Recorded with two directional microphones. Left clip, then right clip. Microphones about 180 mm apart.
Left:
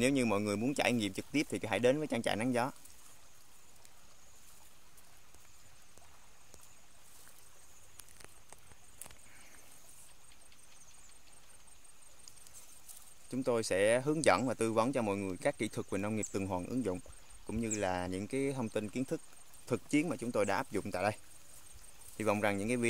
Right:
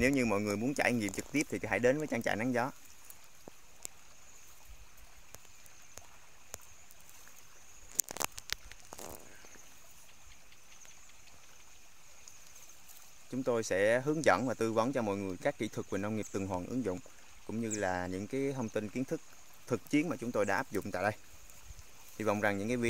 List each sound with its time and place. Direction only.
0.0 s speech: centre (ahead or behind)
13.3 s speech: 5° left (ahead or behind)